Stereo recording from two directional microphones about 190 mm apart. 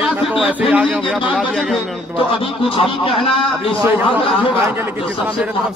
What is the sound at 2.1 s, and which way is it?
Speech, 30° left (ahead or behind).